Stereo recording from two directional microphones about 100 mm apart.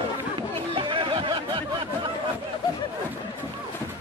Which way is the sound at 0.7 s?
60° right (ahead or behind).